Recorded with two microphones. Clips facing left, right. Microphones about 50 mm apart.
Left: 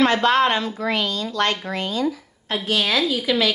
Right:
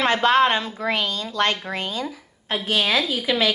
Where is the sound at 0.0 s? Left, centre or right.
Right.